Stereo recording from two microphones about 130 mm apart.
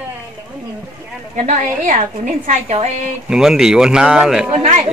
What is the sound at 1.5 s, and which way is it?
A woman's voice, 65° right (ahead or behind).